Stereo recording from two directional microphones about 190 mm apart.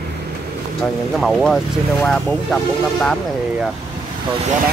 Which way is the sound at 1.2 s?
Centre (ahead or behind).